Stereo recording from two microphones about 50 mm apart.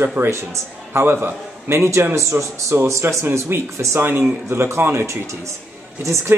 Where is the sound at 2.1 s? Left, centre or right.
Right.